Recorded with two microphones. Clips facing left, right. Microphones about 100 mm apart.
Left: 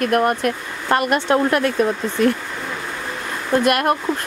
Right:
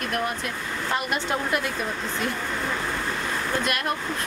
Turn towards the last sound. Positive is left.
turn(degrees=55)  # may be behind; listen again after turning